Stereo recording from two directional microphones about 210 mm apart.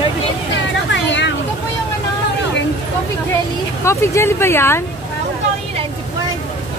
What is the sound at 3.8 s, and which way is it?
Speech, 15° left (ahead or behind).